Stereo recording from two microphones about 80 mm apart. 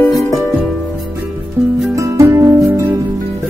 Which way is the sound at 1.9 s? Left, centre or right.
Right.